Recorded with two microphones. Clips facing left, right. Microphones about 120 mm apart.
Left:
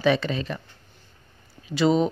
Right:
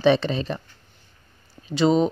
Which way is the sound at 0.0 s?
30° right (ahead or behind).